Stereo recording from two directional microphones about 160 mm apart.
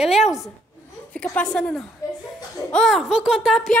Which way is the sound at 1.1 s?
5° left (ahead or behind).